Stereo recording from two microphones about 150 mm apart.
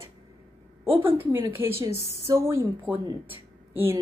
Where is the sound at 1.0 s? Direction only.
15° right (ahead or behind).